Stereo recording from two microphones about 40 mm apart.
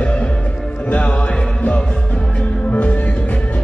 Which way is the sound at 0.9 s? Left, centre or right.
Left.